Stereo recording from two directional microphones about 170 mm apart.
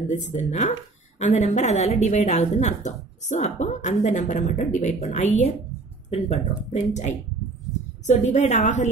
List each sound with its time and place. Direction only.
0.1 s a woman's voice: 45° left (ahead or behind)